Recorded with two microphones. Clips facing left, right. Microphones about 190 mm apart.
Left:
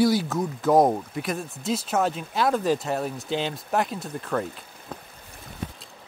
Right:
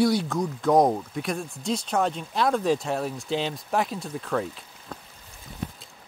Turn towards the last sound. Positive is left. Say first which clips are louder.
# even
turn(degrees=0)  # may be behind; listen again after turning